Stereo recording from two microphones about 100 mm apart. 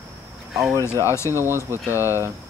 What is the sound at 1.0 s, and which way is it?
Speech, 30° left (ahead or behind).